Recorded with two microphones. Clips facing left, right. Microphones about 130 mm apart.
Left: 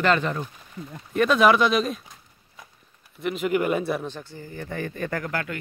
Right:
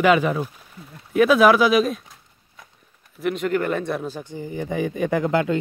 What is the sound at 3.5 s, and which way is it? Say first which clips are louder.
Speech: left 2 dB; 10° left (ahead or behind).